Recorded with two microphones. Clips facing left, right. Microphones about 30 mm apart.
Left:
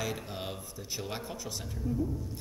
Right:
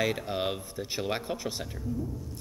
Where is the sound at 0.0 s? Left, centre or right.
Right.